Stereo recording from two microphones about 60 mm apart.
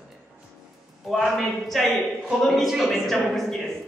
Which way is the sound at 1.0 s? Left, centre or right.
Centre.